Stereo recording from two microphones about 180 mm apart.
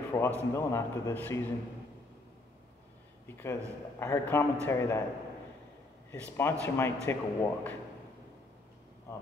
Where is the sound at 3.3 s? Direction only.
10° left (ahead or behind).